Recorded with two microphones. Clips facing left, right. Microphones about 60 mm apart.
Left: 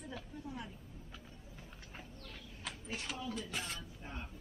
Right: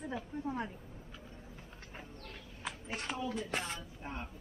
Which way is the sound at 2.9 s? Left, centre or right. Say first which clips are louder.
Right 3 dB; right.